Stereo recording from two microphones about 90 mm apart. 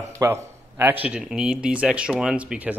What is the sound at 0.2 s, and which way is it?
Speech, 30° right (ahead or behind).